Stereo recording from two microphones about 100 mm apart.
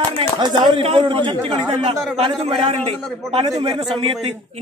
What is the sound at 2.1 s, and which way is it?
Speech, 80° right.